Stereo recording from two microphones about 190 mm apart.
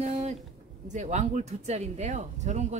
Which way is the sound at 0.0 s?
35° right (ahead or behind).